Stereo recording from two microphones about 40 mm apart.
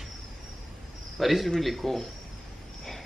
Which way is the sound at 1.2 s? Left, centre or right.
Centre.